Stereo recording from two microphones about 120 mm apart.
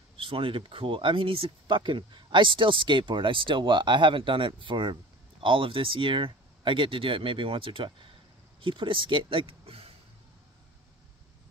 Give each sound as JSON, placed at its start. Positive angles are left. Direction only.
{"t": 0.2, "sound": "speech", "side_deg": -50}